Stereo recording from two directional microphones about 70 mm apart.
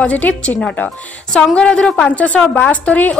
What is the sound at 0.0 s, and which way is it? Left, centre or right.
Speech, centre.